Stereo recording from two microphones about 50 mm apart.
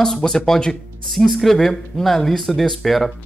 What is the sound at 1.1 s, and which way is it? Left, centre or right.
Speech, centre.